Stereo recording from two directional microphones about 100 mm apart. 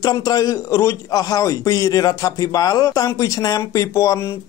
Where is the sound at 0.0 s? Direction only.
40° left (ahead or behind).